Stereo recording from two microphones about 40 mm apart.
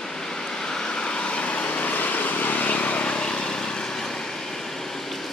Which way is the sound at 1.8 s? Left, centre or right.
Left.